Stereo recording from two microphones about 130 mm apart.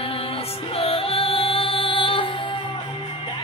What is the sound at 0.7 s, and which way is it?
Music, 45° left (ahead or behind).